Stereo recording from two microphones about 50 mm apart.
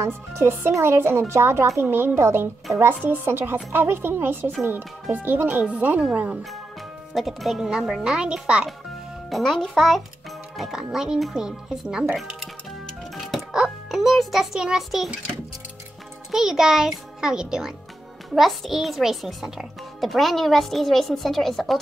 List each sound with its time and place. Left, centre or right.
0.0 s speech: right
1.8 s speech: right
7.2 s a child's voice: centre; by 8.6 s right
9.3 s a child's voice: centre
10.6 s a child's voice: centre
13.1 s music: centre
14.8 s a child's voice: centre
16.3 s a child's voice: centre